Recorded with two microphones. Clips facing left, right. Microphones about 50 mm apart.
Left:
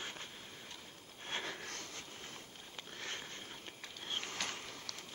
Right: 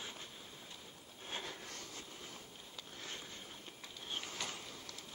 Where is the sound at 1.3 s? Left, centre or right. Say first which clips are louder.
Left 3 dB; left.